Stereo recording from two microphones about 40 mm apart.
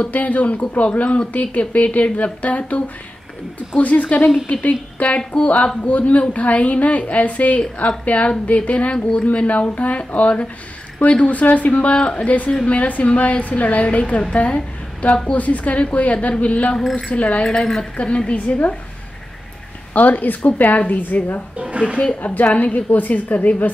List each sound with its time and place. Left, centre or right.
0.1 s a woman's voice: left
3.8 s a woman's voice: left
11.2 s a woman's voice: left
19.9 s a woman's voice: left
21.5 s speech: right
22.2 s a woman's voice: left
22.8 s a woman's voice: left